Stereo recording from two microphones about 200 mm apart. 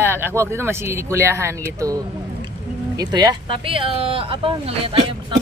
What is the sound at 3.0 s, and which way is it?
Speech, 20° right (ahead or behind).